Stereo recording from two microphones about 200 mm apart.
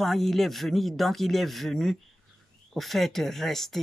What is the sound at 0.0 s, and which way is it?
Speech, centre (ahead or behind).